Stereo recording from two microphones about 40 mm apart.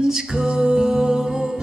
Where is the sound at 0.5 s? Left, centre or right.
Centre.